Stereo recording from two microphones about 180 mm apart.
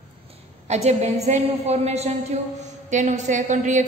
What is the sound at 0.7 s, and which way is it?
A woman's voice, 35° right (ahead or behind).